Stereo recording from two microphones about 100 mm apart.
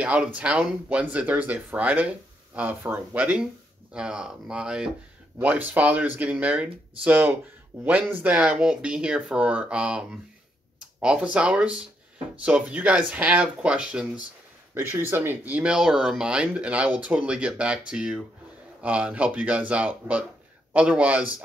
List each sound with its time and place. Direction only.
0.0 s speech: 15° right (ahead or behind)
14.7 s speech: 25° right (ahead or behind)